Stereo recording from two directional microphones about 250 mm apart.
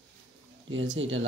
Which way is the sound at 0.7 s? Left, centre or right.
Right.